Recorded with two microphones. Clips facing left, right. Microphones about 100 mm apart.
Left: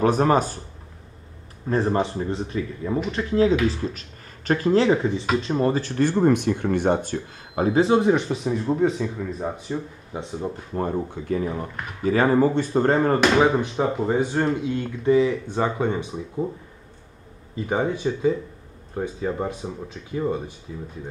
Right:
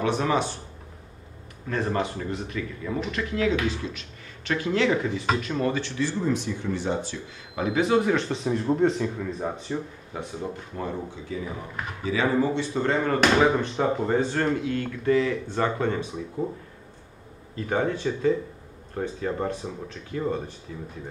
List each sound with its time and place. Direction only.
0.0 s speech: 45° left (ahead or behind)
1.7 s speech: 30° left (ahead or behind)
8.3 s speech: 5° left (ahead or behind)
10.1 s speech: 20° left (ahead or behind)
10.7 s speech: 45° left (ahead or behind)
13.8 s speech: 5° left (ahead or behind)
17.6 s speech: 15° left (ahead or behind)